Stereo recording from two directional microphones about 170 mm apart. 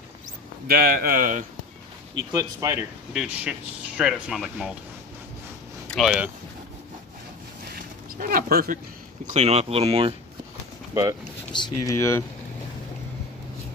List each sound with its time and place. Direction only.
0.7 s speech: 60° right (ahead or behind)
2.3 s speech: 20° right (ahead or behind)
3.1 s speech: 5° right (ahead or behind)
5.9 s speech: centre (ahead or behind)
7.7 s a sound: 55° right (ahead or behind)
9.2 s speech: 40° right (ahead or behind)
11.5 s speech: 25° left (ahead or behind)